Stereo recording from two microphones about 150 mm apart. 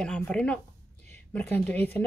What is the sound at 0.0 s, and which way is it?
Speech, 5° left (ahead or behind).